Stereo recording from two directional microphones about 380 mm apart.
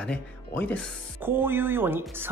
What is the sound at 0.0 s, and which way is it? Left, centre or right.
Speech, centre.